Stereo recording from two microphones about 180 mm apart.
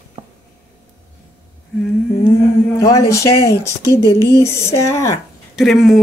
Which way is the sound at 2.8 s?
15° left (ahead or behind).